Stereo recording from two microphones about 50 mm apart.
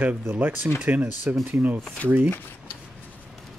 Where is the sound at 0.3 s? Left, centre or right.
Right.